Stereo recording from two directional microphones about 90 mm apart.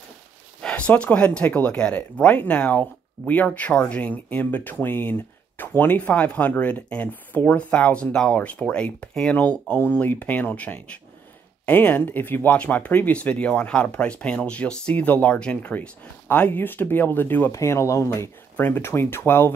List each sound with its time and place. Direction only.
0.6 s speech: 15° left (ahead or behind)
17.5 s speech: 30° left (ahead or behind)